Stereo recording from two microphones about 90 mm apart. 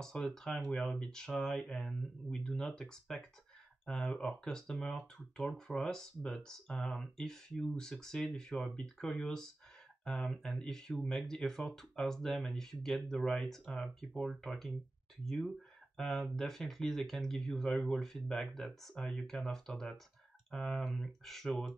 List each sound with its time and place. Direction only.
0.0 s speech: 5° left (ahead or behind)